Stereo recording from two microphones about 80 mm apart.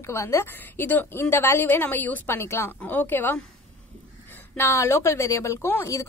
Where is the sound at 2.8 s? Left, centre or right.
Left.